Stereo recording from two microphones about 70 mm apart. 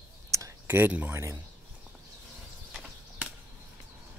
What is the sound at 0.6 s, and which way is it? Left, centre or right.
Speech, right.